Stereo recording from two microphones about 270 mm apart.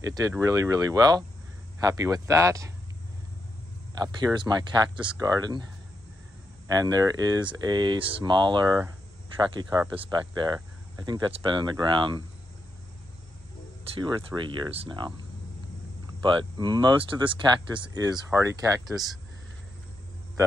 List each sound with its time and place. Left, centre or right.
0.0 s speech: centre
4.0 s speech: centre
6.7 s speech: centre
13.9 s speech: centre
16.2 s speech: centre